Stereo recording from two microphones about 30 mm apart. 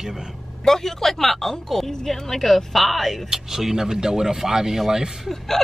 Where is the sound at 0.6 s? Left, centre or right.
Centre.